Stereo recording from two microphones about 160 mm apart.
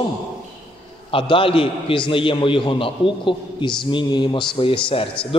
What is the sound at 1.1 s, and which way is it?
A man's voice, 35° left (ahead or behind).